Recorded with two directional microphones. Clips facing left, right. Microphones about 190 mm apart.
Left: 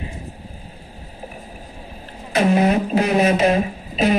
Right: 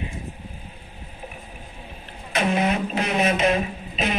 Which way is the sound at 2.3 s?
35° left (ahead or behind).